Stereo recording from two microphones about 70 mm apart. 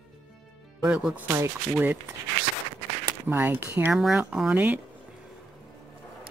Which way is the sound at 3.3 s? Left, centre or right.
Right.